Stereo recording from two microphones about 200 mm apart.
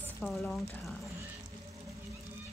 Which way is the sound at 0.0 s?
5° left (ahead or behind).